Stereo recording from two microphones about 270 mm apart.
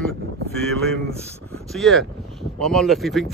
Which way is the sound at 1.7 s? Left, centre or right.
Centre.